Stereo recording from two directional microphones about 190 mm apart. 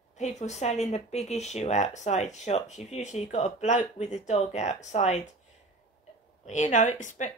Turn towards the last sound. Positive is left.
turn(degrees=40)  # may be behind; listen again after turning